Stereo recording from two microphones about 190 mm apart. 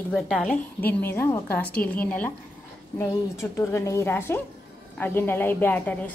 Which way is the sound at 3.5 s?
15° left (ahead or behind).